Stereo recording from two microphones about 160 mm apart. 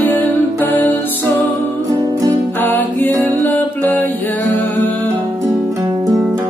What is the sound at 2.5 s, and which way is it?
Music, 10° left (ahead or behind).